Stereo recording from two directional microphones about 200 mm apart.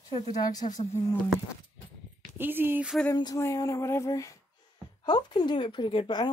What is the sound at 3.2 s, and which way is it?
Speech, 15° left (ahead or behind).